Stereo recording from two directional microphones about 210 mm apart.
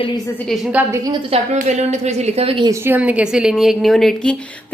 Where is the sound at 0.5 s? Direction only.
5° right (ahead or behind).